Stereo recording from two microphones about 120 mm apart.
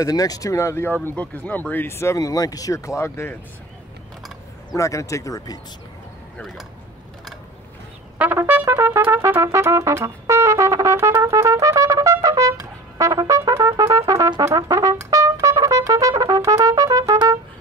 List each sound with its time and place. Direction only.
0.0 s speech: 30° left (ahead or behind)
4.7 s speech: 25° left (ahead or behind)
8.2 s trumpet: 15° right (ahead or behind)